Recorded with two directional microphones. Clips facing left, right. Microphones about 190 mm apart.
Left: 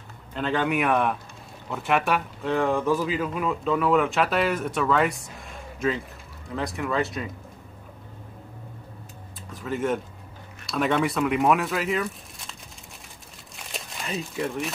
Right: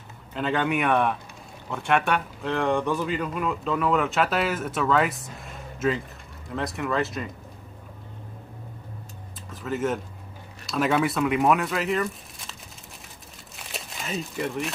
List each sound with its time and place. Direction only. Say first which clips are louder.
0.3 s speech: even; centre (ahead or behind)
6.5 s speech: even; centre (ahead or behind)
9.5 s speech: left 1 dB; centre (ahead or behind)
13.6 s crumpling: even; centre (ahead or behind)